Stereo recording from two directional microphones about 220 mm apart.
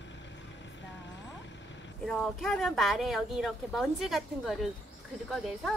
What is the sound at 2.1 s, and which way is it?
Speech, centre (ahead or behind).